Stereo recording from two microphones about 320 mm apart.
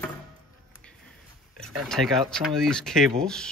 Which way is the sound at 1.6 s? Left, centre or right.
Centre.